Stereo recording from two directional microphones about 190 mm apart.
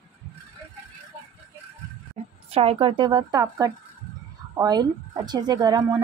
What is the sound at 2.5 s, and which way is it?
Speech, 30° right (ahead or behind).